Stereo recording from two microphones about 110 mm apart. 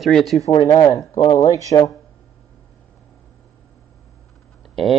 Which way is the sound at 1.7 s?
65° left (ahead or behind).